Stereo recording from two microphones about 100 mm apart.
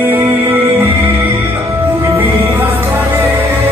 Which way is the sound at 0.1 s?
25° right (ahead or behind).